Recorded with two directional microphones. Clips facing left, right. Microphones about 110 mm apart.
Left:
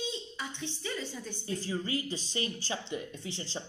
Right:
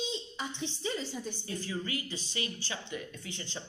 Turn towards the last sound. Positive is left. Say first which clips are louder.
# left 3 dB
turn(degrees=30)  # may be behind; listen again after turning